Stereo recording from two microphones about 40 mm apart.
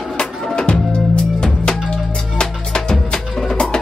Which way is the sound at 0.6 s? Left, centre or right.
Left.